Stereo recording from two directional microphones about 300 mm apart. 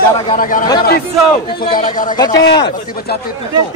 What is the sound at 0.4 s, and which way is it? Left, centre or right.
Speech, left.